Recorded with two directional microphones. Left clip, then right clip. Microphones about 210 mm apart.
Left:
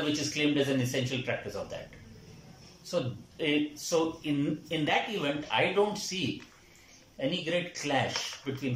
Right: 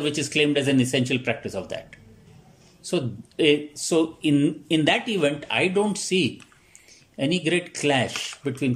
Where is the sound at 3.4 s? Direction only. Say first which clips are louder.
Right 9 dB; 50° right (ahead or behind).